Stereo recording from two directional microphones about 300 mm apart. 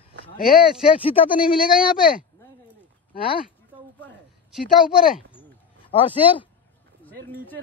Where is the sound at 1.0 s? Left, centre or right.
Centre.